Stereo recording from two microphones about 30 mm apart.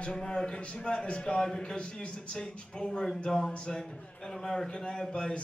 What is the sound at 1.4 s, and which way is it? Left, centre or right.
A man's voice, left.